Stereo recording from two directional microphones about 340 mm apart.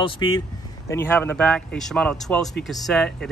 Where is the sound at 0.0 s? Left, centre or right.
Centre.